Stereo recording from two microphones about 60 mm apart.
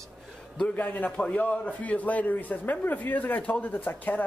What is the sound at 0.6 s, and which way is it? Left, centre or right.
A man's voice, left.